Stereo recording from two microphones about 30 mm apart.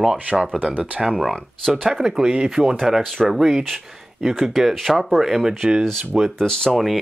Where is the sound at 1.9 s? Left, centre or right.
Centre.